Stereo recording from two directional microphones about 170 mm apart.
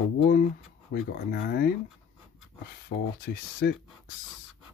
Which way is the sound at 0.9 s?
60° left (ahead or behind).